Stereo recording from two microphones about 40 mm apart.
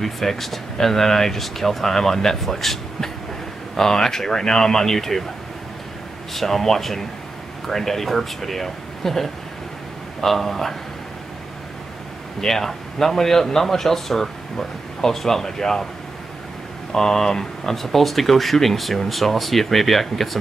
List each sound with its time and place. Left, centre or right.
0.0 s speech: centre
6.3 s speech: centre
12.4 s speech: centre
16.9 s speech: centre